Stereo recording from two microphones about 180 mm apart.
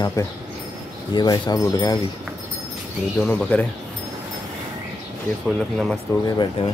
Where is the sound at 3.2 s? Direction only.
10° left (ahead or behind).